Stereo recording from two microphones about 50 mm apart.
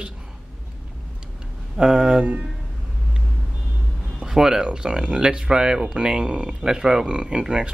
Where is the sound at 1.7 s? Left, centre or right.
Centre.